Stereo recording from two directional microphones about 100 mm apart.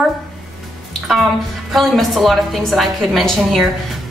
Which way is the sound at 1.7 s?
Centre (ahead or behind).